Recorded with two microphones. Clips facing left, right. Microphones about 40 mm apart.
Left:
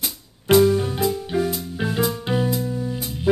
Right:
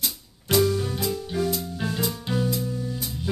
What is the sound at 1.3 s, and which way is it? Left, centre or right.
Music, left.